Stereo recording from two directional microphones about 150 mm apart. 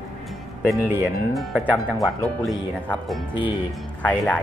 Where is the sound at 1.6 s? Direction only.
10° left (ahead or behind).